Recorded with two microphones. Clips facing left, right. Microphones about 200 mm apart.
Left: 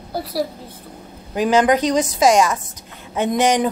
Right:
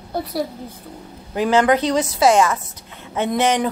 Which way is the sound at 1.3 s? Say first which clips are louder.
Left 1 dB; 15° left (ahead or behind).